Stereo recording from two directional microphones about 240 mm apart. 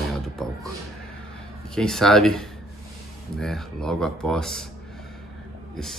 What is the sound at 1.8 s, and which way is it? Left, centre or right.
Speech, centre.